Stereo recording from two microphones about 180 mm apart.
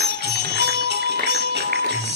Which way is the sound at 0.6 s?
70° right (ahead or behind).